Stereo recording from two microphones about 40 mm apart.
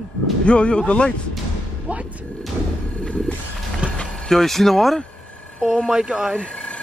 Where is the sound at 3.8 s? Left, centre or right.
Right.